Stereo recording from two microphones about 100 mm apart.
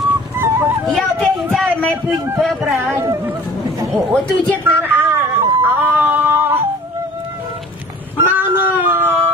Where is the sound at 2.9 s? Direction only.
30° right (ahead or behind).